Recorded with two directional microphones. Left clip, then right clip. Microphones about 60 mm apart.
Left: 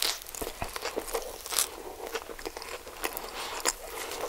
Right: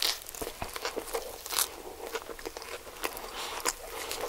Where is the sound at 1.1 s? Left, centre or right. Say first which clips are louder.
Left 1 dB; centre.